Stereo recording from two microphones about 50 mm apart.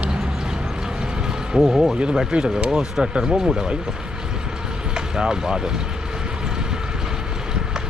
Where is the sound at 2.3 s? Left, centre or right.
Centre.